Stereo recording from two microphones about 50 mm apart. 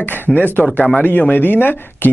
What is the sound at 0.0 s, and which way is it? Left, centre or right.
Speech, left.